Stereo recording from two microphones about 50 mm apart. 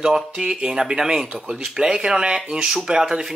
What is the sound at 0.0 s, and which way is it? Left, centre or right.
Speech, centre.